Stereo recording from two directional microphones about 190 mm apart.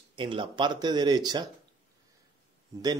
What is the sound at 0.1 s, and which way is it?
Speech, 25° right (ahead or behind).